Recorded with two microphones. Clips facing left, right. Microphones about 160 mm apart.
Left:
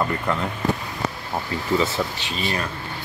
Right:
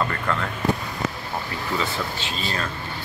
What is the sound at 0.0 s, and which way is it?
Speech, 15° left (ahead or behind).